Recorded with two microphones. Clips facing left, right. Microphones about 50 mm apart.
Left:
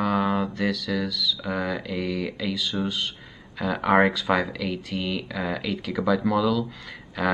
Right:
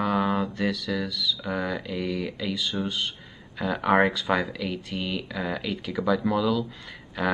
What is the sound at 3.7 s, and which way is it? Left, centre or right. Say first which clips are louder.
Speech: left 2 dB; centre.